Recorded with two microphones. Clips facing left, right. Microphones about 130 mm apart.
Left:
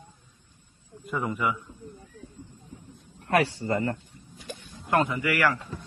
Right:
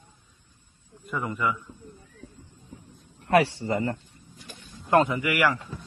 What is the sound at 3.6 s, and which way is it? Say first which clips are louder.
A man's voice: even; 20° right (ahead or behind).